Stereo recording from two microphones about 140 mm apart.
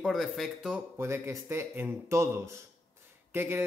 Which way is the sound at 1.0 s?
20° right (ahead or behind).